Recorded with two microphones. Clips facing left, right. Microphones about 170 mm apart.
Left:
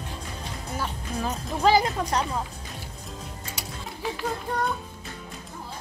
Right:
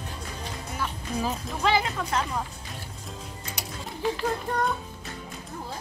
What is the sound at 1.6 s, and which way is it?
Speech, 40° left (ahead or behind).